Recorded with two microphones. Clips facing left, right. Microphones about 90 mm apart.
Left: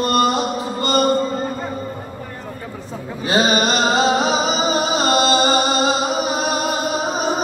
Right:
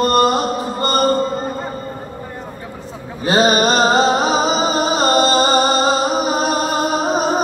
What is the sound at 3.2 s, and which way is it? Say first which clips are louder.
Music: right 3 dB; 40° right (ahead or behind).